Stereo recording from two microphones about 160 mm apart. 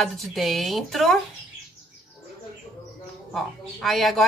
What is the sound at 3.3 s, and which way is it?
Speech, centre (ahead or behind).